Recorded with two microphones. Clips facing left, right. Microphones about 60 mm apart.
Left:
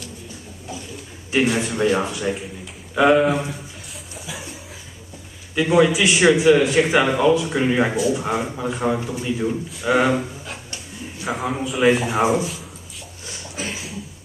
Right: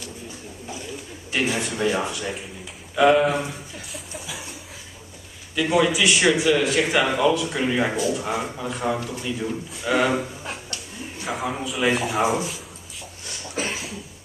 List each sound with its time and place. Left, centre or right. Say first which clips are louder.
1.4 s a man's voice: left 4 dB; centre
3.9 s a sound: left 1 dB; centre
5.6 s a man's voice: left 4 dB; centre
11.2 s a man's voice: left 3 dB; centre